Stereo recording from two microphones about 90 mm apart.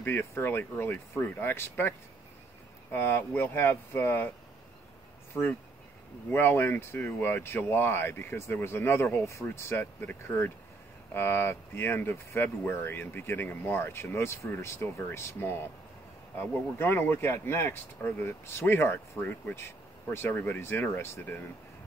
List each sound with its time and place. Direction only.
0.0 s speech: 25° left (ahead or behind)
6.3 s speech: 25° left (ahead or behind)